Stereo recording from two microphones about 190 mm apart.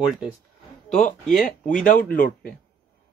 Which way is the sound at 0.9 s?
40° left (ahead or behind).